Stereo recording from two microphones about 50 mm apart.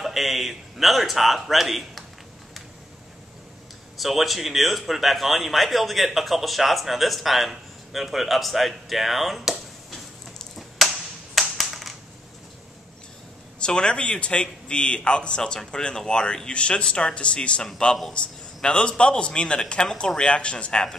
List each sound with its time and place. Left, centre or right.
0.0 s a man's voice: centre
4.0 s a man's voice: centre
10.8 s a sound: centre
13.6 s a man's voice: centre